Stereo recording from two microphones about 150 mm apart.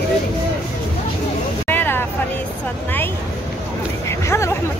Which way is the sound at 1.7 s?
15° left (ahead or behind).